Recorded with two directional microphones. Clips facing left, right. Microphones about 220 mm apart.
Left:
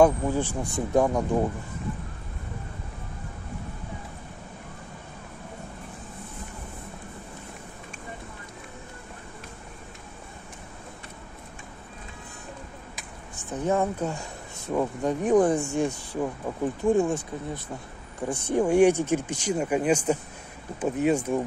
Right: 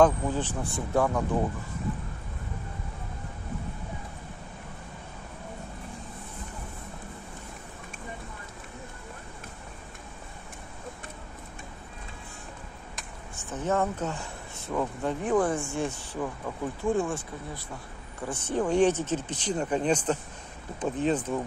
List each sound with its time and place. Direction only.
0.0 s speech: 10° left (ahead or behind)
13.4 s speech: 15° left (ahead or behind)
18.3 s speech: 10° left (ahead or behind)